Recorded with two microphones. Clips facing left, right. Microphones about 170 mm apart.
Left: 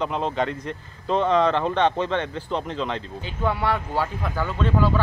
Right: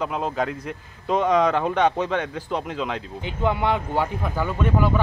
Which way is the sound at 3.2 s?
20° right (ahead or behind).